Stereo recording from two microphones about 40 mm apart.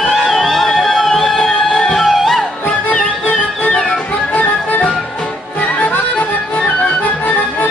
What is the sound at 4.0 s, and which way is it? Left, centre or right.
Music, left.